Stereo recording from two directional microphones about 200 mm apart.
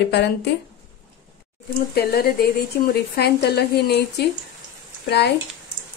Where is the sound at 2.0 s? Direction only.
50° left (ahead or behind).